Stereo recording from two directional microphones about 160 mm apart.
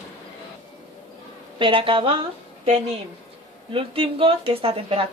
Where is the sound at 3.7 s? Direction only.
35° right (ahead or behind).